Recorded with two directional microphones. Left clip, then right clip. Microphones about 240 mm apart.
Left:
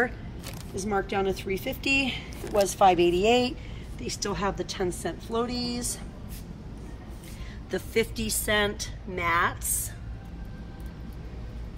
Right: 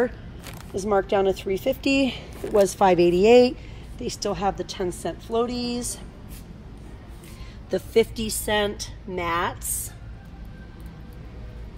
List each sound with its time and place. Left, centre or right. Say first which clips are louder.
0.7 s a woman's voice: right 6 dB; centre
4.0 s a woman's voice: right 4 dB; centre
7.7 s a woman's voice: right 6 dB; centre